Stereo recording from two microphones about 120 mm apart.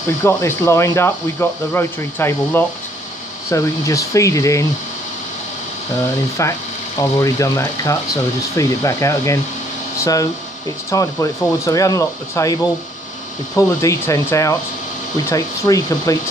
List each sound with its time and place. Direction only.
0.2 s speech: 20° left (ahead or behind)
6.4 s speech: 25° left (ahead or behind)
10.9 s speech: 25° left (ahead or behind)
13.6 s speech: 25° left (ahead or behind)